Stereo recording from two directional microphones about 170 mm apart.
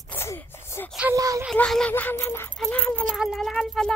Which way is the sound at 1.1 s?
20° right (ahead or behind).